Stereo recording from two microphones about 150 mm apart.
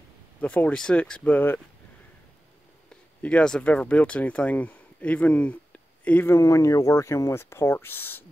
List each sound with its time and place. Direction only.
0.4 s speech: 10° left (ahead or behind)
3.2 s speech: 10° left (ahead or behind)